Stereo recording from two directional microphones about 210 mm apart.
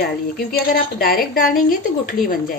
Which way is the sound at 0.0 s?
45° left (ahead or behind).